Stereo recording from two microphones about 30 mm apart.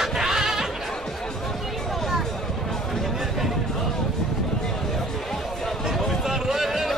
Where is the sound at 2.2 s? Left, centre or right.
Centre.